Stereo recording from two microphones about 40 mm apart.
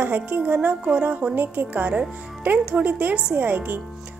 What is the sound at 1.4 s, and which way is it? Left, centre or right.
A woman's voice, right.